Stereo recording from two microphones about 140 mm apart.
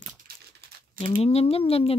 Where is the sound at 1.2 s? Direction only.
45° left (ahead or behind).